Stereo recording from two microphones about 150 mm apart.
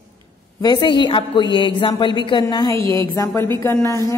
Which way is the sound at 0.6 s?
30° left (ahead or behind).